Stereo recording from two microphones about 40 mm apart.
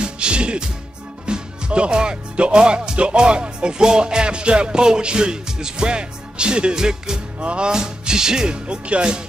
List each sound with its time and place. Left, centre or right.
0.0 s music: right
1.2 s speech: right
7.3 s speech: right
7.7 s speech: centre